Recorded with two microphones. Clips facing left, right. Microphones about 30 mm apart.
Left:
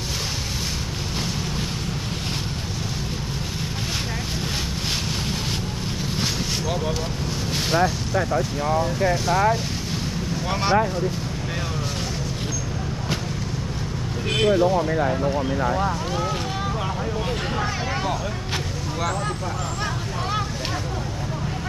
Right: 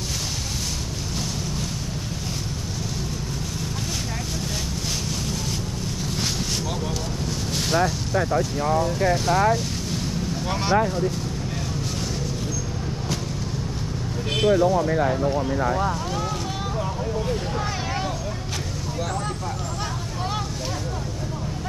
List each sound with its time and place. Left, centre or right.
7.5 s vehicle: left
10.5 s speech: centre
14.3 s speech: left